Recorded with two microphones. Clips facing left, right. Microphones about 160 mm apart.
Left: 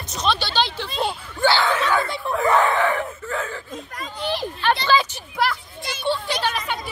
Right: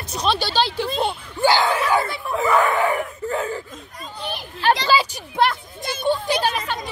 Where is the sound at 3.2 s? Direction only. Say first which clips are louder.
Right 4 dB; 35° right (ahead or behind).